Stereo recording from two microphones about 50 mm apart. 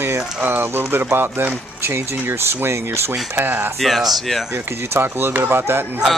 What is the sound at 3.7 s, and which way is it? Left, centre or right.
Speech, centre.